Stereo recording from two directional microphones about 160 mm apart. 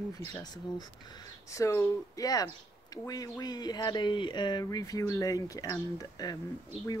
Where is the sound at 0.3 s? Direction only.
25° left (ahead or behind).